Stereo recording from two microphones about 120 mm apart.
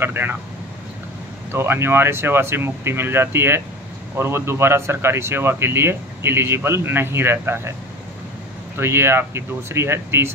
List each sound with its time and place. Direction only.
0.0 s speech: 20° right (ahead or behind)
1.5 s speech: 20° right (ahead or behind)
8.7 s speech: 20° right (ahead or behind)